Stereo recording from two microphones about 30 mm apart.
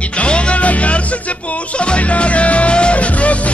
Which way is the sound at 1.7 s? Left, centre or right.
Left.